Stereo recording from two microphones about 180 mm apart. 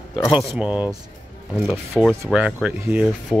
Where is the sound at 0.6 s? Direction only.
5° right (ahead or behind).